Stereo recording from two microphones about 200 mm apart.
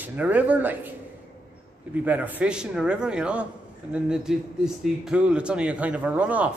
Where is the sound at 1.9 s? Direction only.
5° right (ahead or behind).